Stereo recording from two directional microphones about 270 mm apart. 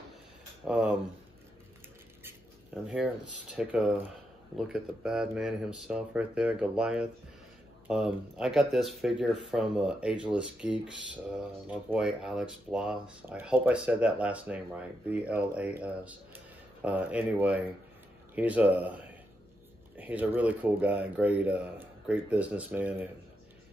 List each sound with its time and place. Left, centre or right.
0.7 s speech: centre
2.7 s speech: centre